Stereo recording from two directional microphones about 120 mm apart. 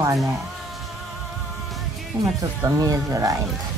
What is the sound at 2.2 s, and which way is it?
Speech, 30° right (ahead or behind).